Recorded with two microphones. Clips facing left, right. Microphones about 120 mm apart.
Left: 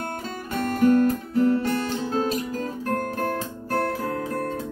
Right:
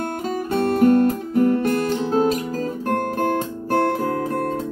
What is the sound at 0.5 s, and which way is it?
Guitar, 30° right (ahead or behind).